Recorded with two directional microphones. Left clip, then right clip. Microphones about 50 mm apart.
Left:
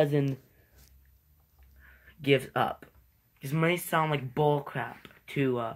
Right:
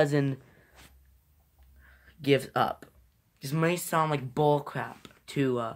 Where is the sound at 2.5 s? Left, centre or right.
Right.